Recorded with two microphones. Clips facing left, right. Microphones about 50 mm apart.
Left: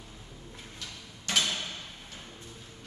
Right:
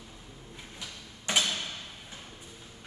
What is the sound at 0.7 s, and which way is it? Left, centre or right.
Tick-tock, centre.